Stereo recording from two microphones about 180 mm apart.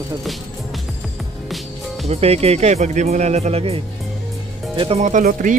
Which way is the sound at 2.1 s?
35° right (ahead or behind).